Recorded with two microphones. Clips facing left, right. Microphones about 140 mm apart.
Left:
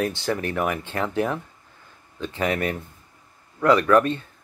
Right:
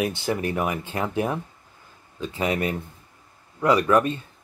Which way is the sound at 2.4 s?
20° right (ahead or behind).